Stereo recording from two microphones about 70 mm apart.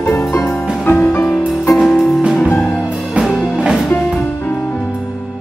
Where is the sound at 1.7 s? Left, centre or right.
Centre.